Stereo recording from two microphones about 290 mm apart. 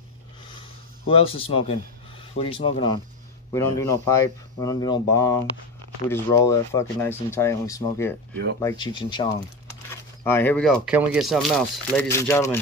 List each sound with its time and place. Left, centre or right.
1.0 s speech: centre